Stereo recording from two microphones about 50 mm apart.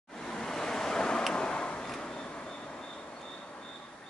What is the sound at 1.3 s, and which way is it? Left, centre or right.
Tick-tock, centre.